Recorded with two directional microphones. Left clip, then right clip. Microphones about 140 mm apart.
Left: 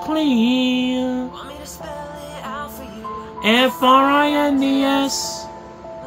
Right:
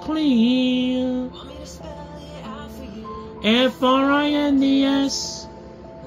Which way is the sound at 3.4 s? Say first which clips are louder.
Left 3 dB; 15° left (ahead or behind).